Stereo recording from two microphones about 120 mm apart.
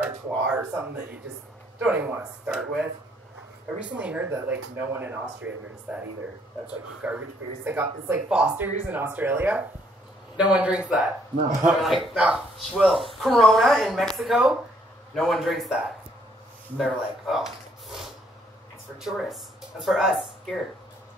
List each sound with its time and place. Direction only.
0.6 s speech: 20° right (ahead or behind); by 20.5 s centre (ahead or behind)